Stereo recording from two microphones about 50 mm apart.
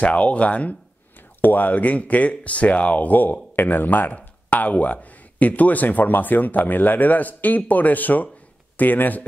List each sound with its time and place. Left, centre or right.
0.0 s speech: left